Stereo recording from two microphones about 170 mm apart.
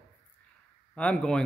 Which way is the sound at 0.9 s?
5° left (ahead or behind).